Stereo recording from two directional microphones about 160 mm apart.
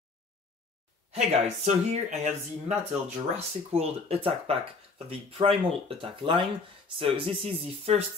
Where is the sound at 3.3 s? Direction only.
40° right (ahead or behind).